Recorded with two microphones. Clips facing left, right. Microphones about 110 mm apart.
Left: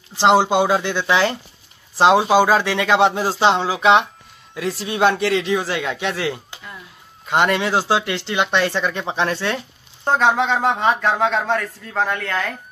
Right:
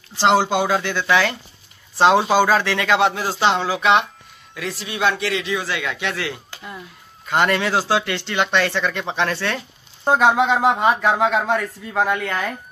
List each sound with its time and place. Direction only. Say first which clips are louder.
0.2 s speech: left 2 dB; 20° left (ahead or behind)
4.7 s speech: left 4 dB; 40° left (ahead or behind)
7.2 s speech: left 1 dB; 15° left (ahead or behind)
10.0 s speech: right 1 dB; 10° right (ahead or behind)